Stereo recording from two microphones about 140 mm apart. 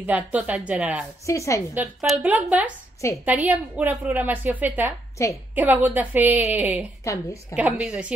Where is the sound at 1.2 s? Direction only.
20° left (ahead or behind).